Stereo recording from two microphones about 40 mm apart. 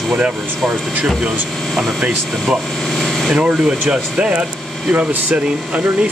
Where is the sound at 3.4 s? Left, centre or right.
Right.